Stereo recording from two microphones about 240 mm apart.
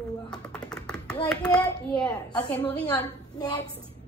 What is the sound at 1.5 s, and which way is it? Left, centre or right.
A woman's voice, centre.